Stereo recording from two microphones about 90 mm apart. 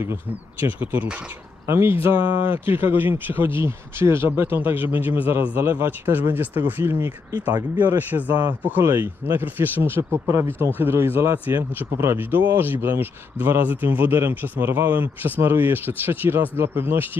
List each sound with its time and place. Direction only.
0.3 s speech: 20° right (ahead or behind)